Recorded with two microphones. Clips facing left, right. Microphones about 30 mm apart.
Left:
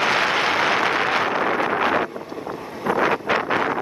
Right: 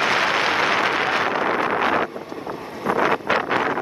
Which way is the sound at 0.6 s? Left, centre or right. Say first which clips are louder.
Even; left.